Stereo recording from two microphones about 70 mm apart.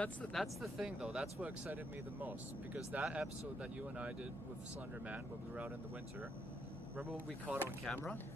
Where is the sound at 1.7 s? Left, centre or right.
Right.